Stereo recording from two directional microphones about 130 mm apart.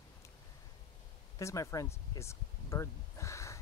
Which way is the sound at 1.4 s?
25° left (ahead or behind).